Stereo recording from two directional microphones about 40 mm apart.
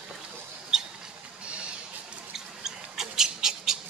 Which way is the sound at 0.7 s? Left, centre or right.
Centre.